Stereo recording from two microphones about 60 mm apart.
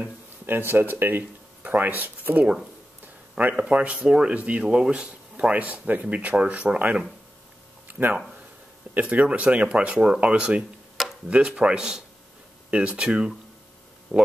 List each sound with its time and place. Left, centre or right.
0.5 s speech: right; by 14.3 s centre